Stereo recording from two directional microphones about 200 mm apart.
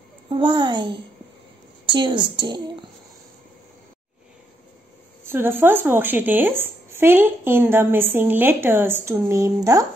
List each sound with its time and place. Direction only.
0.3 s a woman's voice: 25° right (ahead or behind)
5.2 s speech: 10° right (ahead or behind)